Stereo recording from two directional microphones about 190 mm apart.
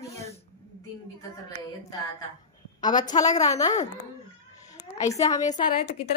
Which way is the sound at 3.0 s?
20° left (ahead or behind).